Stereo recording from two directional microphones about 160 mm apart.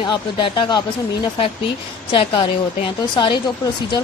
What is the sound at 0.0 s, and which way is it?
Speech, 30° left (ahead or behind).